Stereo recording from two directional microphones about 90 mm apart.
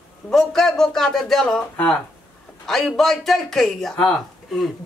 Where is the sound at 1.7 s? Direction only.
15° left (ahead or behind).